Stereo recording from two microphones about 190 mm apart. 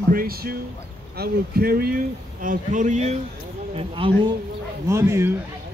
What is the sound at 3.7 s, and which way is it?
Speech, 30° right (ahead or behind).